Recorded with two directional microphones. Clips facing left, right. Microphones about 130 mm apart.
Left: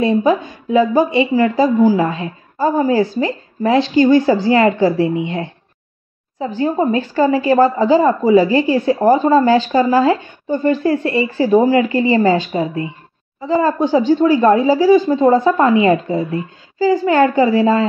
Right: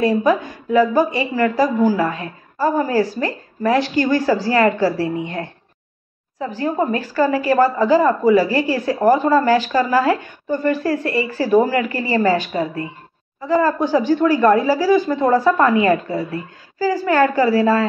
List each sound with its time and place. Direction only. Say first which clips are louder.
0.0 s a woman's voice: left 2 dB; 25° left (ahead or behind)